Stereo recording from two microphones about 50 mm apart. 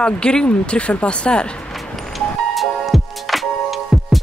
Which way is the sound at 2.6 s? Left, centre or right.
Centre.